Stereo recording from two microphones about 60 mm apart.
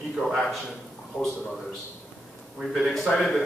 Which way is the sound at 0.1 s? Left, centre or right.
Centre.